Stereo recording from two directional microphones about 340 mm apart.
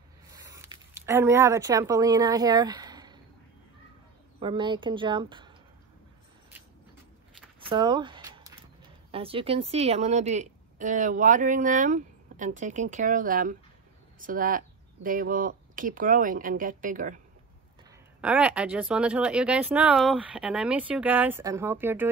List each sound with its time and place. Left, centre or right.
0.3 s speech: centre
4.4 s speech: centre
7.6 s speech: centre
18.2 s speech: centre